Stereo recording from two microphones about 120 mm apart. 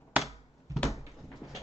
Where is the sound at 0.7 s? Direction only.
30° right (ahead or behind).